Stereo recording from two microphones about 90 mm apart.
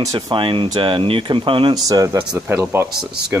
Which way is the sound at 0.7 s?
80° right.